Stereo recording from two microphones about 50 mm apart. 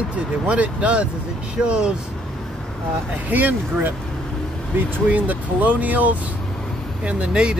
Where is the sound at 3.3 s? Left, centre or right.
Right.